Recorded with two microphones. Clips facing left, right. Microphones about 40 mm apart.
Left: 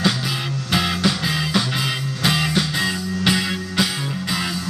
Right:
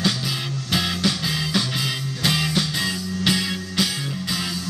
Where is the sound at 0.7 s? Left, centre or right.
Centre.